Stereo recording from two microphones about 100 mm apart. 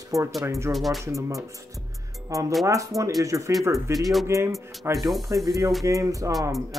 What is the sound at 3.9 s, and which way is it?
Speech, centre (ahead or behind).